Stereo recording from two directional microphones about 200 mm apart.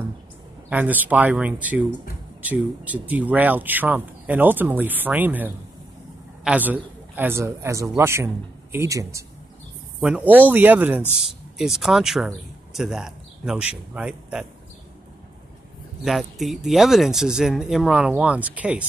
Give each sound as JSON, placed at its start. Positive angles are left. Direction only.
{"t": 0.7, "sound": "a man's voice", "side_deg": -10}
{"t": 16.0, "sound": "speech", "side_deg": 0}